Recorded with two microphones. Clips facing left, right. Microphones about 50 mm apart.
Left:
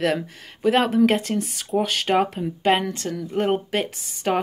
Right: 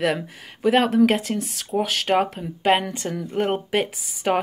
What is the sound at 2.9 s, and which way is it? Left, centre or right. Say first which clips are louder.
Speech: even; centre.